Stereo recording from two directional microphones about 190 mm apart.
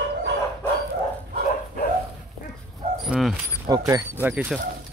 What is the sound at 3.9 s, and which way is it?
Speech, 15° right (ahead or behind).